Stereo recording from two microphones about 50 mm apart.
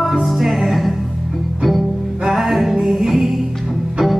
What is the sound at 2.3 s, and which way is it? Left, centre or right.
Music, centre.